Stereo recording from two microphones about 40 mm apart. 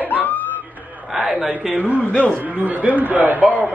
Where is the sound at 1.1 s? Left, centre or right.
Centre.